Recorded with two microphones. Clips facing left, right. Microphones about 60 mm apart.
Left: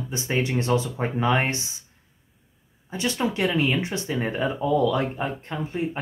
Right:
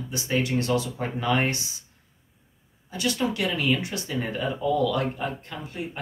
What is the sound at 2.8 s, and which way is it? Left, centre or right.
Speech, left.